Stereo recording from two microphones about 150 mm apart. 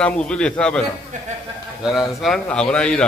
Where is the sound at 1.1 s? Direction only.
55° right (ahead or behind).